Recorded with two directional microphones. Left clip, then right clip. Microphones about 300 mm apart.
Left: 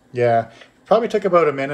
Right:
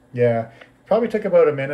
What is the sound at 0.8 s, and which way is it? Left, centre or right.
Speech, left.